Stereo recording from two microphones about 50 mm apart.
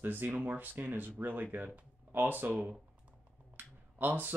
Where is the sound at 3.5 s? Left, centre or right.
Right.